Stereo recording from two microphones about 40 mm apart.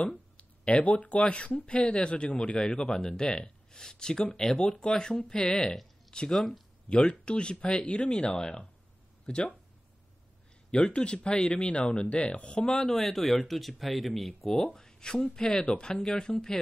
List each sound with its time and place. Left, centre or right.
0.0 s speech: left
6.9 s speech: left
10.7 s speech: left
12.8 s speech: centre
14.4 s speech: centre